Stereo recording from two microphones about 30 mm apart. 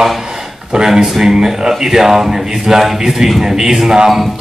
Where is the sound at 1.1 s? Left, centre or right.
Centre.